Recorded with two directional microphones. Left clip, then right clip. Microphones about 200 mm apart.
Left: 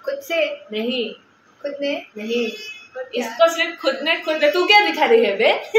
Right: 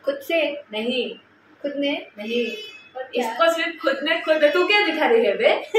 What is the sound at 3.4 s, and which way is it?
A woman's voice, 10° left (ahead or behind).